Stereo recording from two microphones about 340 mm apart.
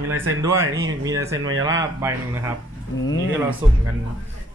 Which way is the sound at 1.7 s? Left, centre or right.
Centre.